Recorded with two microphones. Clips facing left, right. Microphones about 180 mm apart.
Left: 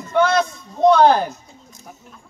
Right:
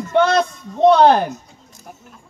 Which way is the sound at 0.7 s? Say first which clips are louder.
Right 2 dB; 25° right (ahead or behind).